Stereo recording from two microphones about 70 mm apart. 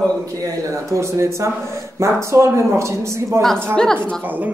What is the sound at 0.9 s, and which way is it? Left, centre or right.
A man's voice, right.